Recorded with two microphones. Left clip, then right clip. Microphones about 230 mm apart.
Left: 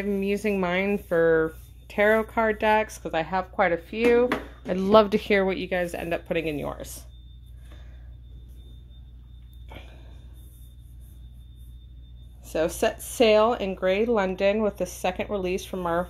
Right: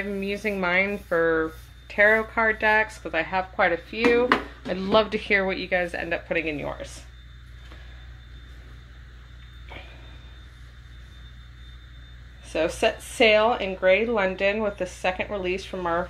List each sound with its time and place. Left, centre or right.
0.1 s speech: left
12.4 s speech: left